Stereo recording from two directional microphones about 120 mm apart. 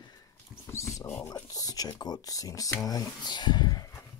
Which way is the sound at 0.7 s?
25° left (ahead or behind).